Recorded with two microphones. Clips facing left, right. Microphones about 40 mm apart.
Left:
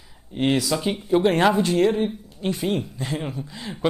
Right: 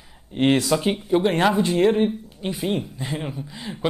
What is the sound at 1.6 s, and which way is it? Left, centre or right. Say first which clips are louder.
Speech: right 1 dB; centre.